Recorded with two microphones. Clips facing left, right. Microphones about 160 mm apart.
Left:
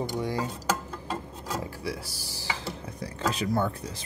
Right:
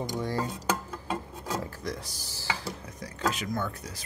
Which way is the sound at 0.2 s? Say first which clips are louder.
Right 1 dB; 15° left (ahead or behind).